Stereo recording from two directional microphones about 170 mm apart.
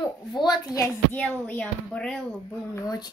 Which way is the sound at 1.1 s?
10° left (ahead or behind).